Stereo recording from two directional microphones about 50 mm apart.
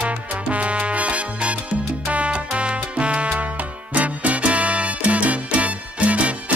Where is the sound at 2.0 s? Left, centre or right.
Right.